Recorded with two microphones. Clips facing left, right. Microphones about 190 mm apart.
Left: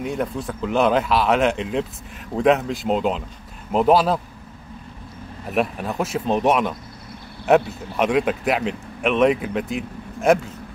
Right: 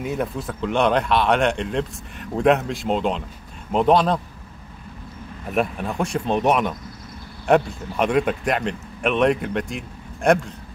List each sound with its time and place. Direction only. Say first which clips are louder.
0.0 s speech: left 1 dB; centre (ahead or behind)
5.5 s speech: even; centre (ahead or behind)